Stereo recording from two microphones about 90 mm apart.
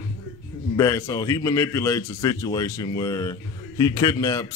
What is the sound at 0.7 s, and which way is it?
A man's voice, 35° left (ahead or behind).